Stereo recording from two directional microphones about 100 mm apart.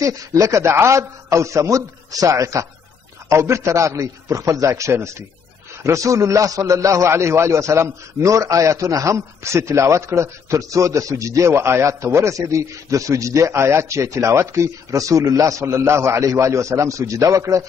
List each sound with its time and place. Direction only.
0.0 s a man's voice: 35° right (ahead or behind)